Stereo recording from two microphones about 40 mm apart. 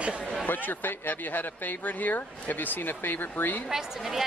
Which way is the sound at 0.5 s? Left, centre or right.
Left.